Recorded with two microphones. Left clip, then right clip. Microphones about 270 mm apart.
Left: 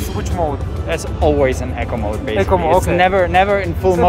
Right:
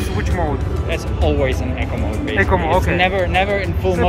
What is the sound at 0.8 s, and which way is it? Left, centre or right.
Speech, centre.